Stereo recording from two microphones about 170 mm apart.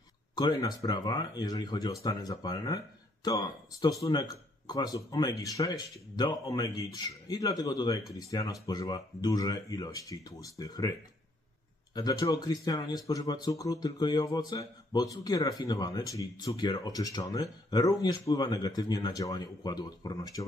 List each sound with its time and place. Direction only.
0.4 s speech: 25° left (ahead or behind)